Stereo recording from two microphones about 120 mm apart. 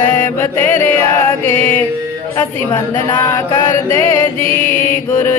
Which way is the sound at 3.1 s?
40° left (ahead or behind).